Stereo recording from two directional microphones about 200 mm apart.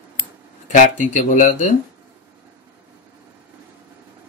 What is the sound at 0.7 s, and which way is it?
Speech, 40° left (ahead or behind).